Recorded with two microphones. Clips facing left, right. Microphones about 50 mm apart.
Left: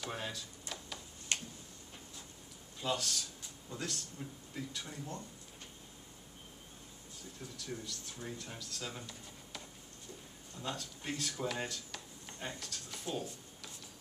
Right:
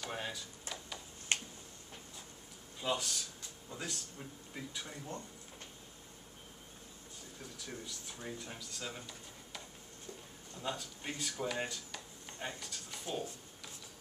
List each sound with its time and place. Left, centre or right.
0.0 s a sound: centre
1.3 s tick-tock: right
2.8 s speech: centre
7.5 s speech: centre
10.6 s speech: centre